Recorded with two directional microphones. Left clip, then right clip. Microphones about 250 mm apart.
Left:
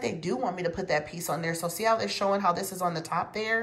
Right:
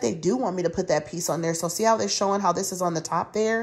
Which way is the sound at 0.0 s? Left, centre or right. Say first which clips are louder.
Right 5 dB; centre.